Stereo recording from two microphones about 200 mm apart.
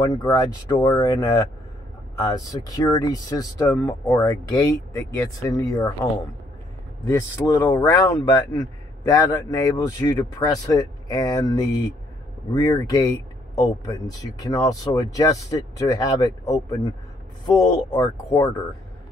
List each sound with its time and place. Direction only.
0.0 s speech: 20° left (ahead or behind)
7.1 s speech: 15° left (ahead or behind)